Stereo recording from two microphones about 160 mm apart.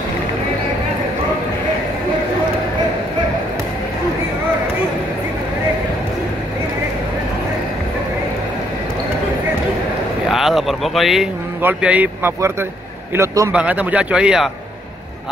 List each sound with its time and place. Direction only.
10.3 s a man's voice: centre (ahead or behind); by 13.5 s 20° right (ahead or behind)
13.5 s speech: 10° right (ahead or behind)